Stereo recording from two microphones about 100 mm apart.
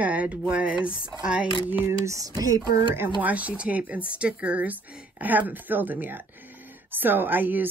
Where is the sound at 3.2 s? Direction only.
15° right (ahead or behind).